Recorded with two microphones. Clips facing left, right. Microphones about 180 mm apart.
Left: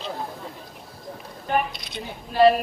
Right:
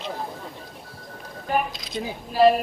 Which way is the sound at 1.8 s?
Centre (ahead or behind).